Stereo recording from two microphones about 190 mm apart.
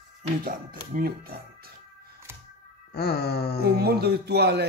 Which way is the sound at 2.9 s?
60° left (ahead or behind).